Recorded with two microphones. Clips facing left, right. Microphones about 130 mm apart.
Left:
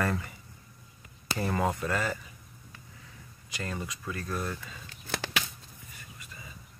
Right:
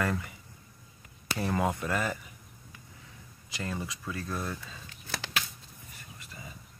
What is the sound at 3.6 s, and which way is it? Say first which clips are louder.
Speech: right 1 dB; 10° right (ahead or behind).